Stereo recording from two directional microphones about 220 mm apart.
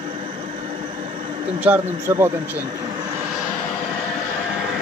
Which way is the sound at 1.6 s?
10° right (ahead or behind).